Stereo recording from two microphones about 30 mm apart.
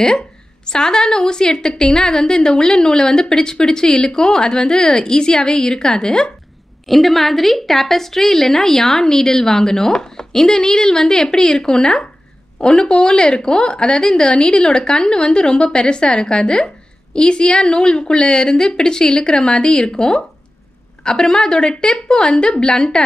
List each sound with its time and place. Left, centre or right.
0.7 s a woman's voice: left
6.9 s a woman's voice: centre; by 23.0 s left